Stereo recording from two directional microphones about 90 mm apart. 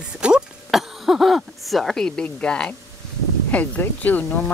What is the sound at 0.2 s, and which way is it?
Throat clearing, 10° right (ahead or behind).